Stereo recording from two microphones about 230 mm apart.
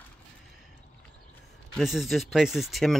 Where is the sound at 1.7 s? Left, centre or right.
Centre.